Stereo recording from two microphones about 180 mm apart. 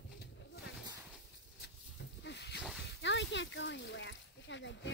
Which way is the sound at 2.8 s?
85° left.